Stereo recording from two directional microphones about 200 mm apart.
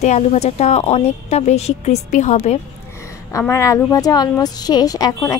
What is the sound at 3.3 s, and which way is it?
A woman's voice, 15° left (ahead or behind).